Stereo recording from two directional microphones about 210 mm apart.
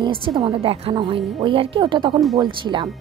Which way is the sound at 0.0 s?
25° right (ahead or behind).